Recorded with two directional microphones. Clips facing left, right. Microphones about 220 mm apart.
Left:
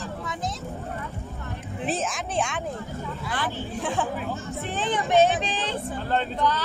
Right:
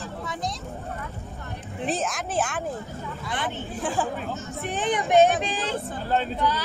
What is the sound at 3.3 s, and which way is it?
Speech, 20° right (ahead or behind).